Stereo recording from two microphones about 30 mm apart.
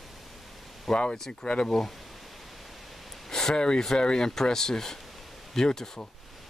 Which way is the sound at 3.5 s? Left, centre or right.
Left.